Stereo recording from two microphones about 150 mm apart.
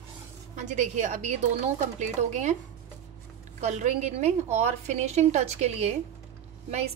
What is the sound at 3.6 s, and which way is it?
A woman's voice, 50° right (ahead or behind).